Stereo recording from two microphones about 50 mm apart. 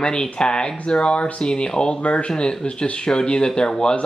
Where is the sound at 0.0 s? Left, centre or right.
Centre.